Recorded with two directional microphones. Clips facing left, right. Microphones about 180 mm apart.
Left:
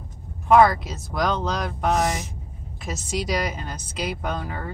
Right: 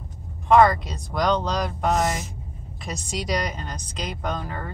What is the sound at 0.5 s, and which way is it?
A woman's voice, 5° left (ahead or behind).